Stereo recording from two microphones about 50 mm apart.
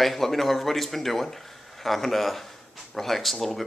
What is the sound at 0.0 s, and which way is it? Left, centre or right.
Speech, centre.